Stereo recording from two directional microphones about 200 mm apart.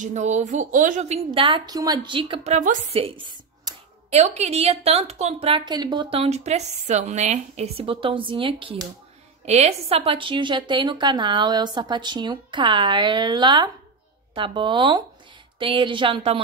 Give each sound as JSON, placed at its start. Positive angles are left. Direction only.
{"t": 0.0, "sound": "a woman's voice", "side_deg": -35}